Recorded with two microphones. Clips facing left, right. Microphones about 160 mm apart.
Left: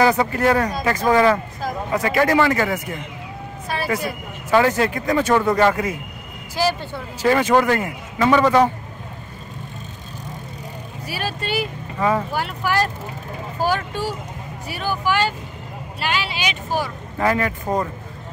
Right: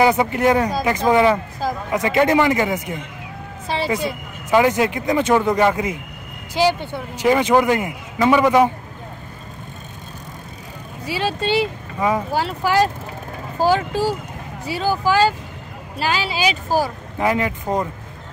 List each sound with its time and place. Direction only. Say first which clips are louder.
0.0 s speech: right 1 dB; 20° right (ahead or behind)
11.1 s speech: right 5 dB; 25° right (ahead or behind)
12.0 s speech: even; 15° right (ahead or behind)
12.3 s speech: right 3 dB; 30° right (ahead or behind)
16.4 s speech: right 7 dB; 40° right (ahead or behind)
17.2 s speech: even; 20° right (ahead or behind)